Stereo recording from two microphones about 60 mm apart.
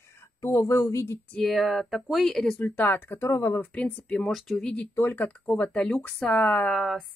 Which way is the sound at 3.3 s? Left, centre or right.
Left.